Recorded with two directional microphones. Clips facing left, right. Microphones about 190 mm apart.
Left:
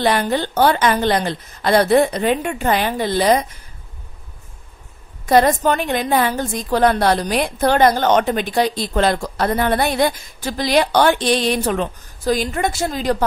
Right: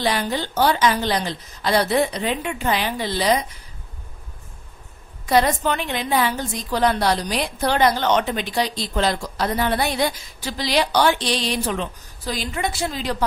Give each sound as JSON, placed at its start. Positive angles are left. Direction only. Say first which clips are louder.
{"t": 0.0, "sound": "a woman's voice", "louder": "left 5 dB", "side_deg": 55}
{"t": 5.2, "sound": "a woman's voice", "louder": "left 4 dB", "side_deg": 50}